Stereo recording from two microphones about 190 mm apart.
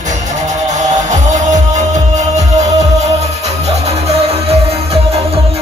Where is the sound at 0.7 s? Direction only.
40° right (ahead or behind).